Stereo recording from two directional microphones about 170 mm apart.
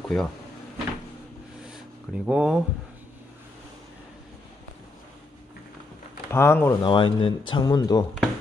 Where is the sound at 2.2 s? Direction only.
5° right (ahead or behind).